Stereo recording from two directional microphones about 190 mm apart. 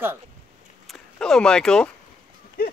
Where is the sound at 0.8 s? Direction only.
Centre (ahead or behind).